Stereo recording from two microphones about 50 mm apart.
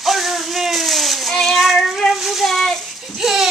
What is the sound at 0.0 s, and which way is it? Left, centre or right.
Child singing, centre.